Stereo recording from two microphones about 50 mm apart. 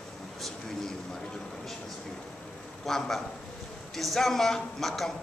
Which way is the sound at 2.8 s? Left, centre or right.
Centre.